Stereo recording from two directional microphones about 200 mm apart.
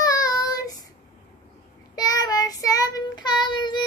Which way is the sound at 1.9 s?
20° left (ahead or behind).